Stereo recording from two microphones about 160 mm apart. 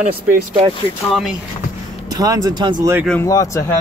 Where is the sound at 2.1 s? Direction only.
25° right (ahead or behind).